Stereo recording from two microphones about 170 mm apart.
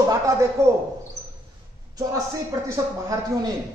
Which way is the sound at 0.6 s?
15° right (ahead or behind).